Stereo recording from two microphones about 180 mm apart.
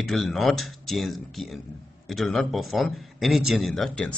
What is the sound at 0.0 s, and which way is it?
Speech, centre (ahead or behind).